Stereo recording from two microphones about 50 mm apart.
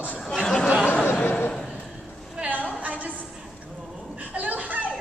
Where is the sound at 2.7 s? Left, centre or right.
Right.